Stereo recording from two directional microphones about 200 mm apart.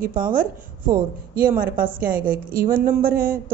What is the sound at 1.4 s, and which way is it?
Speech, 45° right (ahead or behind).